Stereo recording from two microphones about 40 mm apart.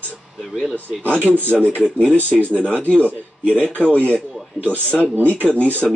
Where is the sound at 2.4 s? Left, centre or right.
Left.